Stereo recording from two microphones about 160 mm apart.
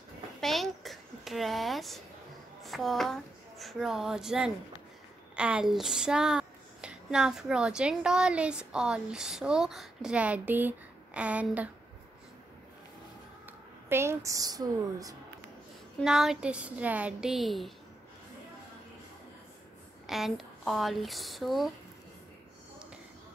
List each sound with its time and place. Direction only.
0.4 s a sound: centre (ahead or behind)
2.6 s speech: centre (ahead or behind)
13.8 s a woman's voice: 15° right (ahead or behind)
16.0 s a woman's voice: 5° right (ahead or behind)
20.1 s a woman's voice: centre (ahead or behind)